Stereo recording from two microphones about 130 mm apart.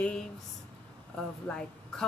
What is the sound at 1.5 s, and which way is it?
Speech, 10° left (ahead or behind).